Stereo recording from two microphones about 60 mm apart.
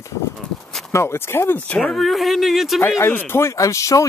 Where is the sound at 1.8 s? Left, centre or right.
Centre.